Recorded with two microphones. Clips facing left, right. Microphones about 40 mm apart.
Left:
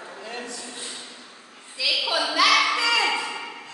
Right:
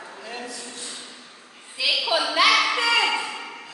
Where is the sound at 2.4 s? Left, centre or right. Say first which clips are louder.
Even; centre.